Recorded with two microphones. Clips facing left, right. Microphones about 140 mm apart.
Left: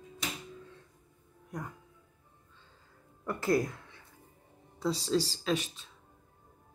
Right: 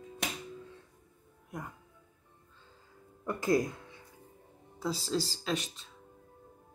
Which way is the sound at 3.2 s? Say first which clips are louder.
Even; 20° right (ahead or behind).